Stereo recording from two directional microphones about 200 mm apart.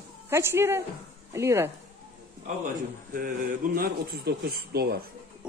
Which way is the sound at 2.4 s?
40° right (ahead or behind).